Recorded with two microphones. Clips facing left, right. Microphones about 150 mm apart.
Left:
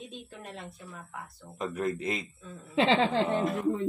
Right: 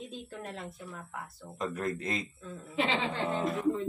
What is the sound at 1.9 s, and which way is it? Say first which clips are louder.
Speech: left 4 dB; 20° left (ahead or behind).